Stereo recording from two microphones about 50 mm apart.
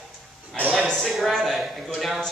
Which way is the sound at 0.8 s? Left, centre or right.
Centre.